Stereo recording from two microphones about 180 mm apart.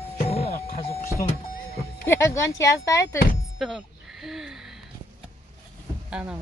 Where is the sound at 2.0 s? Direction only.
15° left (ahead or behind).